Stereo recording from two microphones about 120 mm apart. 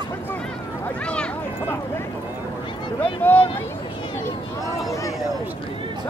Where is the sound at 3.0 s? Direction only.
15° left (ahead or behind).